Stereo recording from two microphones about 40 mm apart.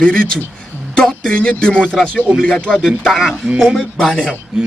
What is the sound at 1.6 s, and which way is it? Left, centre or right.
Speech, left.